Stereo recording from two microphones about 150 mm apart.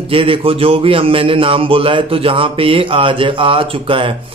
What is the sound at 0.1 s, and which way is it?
A man's voice, 35° right (ahead or behind).